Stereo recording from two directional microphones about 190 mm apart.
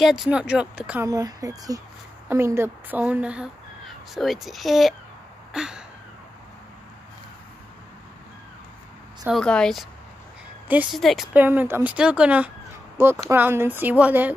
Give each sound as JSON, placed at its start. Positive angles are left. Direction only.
{"t": 0.0, "sound": "speech", "side_deg": 0}
{"t": 1.0, "sound": "speech", "side_deg": -15}
{"t": 5.5, "sound": "a sound", "side_deg": -5}
{"t": 9.2, "sound": "speech", "side_deg": 0}